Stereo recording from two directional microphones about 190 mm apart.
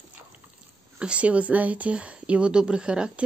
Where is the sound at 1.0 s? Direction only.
5° right (ahead or behind).